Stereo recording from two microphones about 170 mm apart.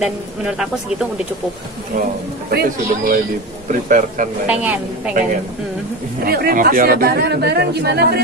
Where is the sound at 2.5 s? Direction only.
65° right (ahead or behind).